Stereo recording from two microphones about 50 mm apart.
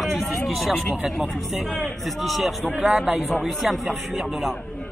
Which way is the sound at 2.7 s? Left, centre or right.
Centre.